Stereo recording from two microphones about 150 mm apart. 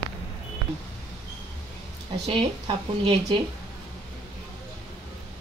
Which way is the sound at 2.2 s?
35° right (ahead or behind).